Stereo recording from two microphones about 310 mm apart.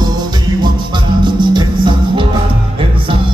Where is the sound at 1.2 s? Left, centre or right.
Centre.